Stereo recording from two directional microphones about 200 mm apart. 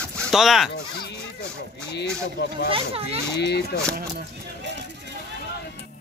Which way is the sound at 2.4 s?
60° left (ahead or behind).